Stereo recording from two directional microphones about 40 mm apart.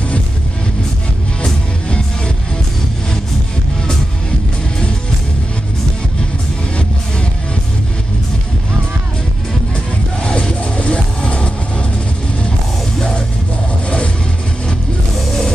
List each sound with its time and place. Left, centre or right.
1.4 s music: left
10.2 s music: left